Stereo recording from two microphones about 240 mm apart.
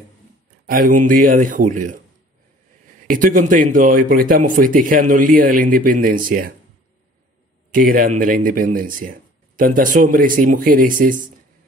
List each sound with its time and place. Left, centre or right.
0.7 s speech: right
3.1 s speech: right
7.7 s speech: right